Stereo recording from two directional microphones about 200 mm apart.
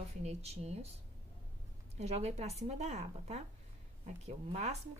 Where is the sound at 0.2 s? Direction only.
35° right (ahead or behind).